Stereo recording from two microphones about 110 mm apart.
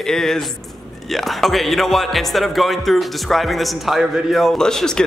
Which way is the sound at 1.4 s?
Centre (ahead or behind).